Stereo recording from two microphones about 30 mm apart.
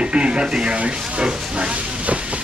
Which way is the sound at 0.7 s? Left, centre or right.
Right.